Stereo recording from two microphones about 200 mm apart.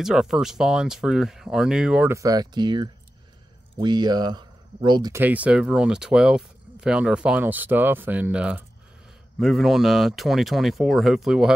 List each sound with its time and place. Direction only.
0.0 s speech: centre (ahead or behind); by 5.2 s 20° right (ahead or behind)
5.2 s speech: 5° right (ahead or behind)